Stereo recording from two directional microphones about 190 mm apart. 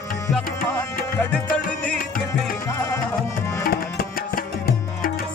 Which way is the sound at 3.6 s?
55° left (ahead or behind).